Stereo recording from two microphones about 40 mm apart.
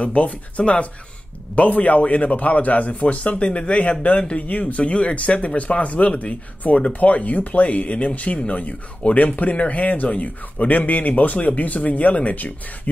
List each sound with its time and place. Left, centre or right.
0.0 s speech: left